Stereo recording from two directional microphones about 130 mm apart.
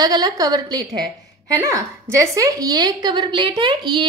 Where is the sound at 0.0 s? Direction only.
30° right (ahead or behind).